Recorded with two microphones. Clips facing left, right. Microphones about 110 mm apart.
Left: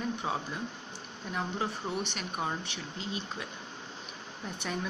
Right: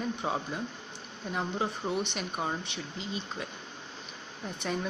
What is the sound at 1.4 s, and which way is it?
Speech, 5° right (ahead or behind).